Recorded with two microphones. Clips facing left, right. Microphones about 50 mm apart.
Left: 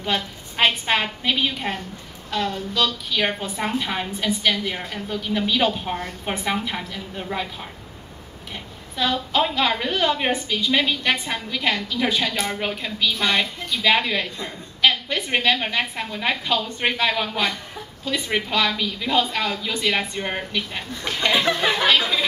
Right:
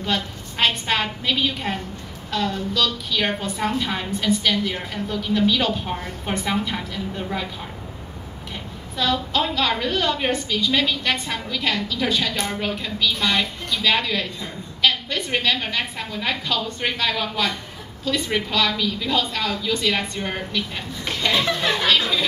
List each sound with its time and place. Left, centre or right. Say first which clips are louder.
0.0 s a woman's voice: even; centre
8.9 s a woman's voice: even; centre